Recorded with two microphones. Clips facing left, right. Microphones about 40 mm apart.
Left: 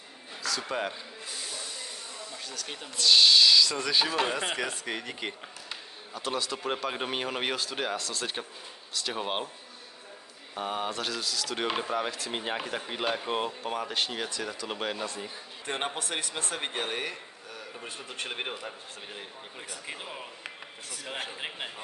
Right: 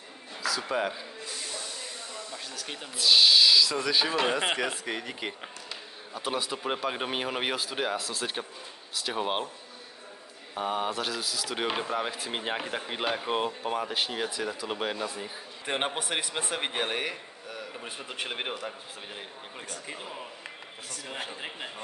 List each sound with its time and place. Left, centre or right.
0.4 s speech: centre
2.3 s speech: centre
4.3 s speech: centre
6.1 s speech: centre
10.5 s speech: centre
15.6 s a man's voice: right
19.7 s speech: centre